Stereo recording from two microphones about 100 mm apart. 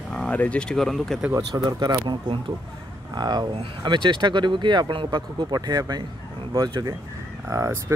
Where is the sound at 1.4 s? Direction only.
45° right (ahead or behind).